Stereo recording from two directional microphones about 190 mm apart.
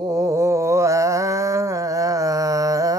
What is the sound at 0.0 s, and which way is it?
Mantra, 15° right (ahead or behind).